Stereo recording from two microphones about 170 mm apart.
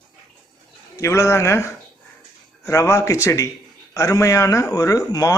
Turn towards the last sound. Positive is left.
turn(degrees=20)  # may be behind; listen again after turning